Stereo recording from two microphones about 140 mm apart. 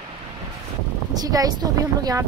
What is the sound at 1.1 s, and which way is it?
Speech, 25° right (ahead or behind).